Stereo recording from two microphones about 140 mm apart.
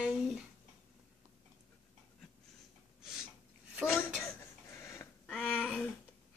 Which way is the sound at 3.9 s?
10° left (ahead or behind).